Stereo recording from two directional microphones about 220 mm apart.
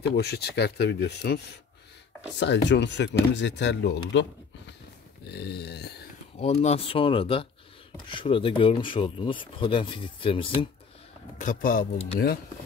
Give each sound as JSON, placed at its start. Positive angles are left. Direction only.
{"t": 0.1, "sound": "speech", "side_deg": 50}
{"t": 6.3, "sound": "speech", "side_deg": 30}
{"t": 11.3, "sound": "speech", "side_deg": 40}